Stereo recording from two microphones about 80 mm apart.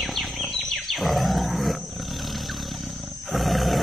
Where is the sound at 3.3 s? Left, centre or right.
Centre.